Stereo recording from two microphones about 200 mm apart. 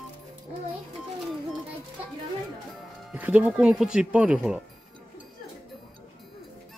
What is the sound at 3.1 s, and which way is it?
Speech, 10° right (ahead or behind).